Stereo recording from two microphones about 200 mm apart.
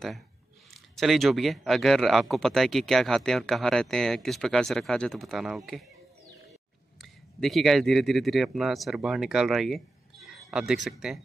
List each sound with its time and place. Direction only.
0.9 s speech: centre (ahead or behind)
7.0 s speech: centre (ahead or behind)